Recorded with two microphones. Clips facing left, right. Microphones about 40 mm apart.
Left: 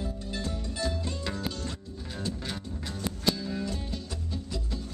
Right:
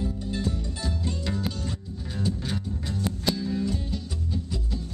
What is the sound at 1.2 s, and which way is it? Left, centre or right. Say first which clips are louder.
Music: right 3 dB; centre.